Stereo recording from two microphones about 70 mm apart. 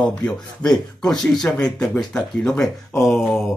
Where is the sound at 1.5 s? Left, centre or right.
Centre.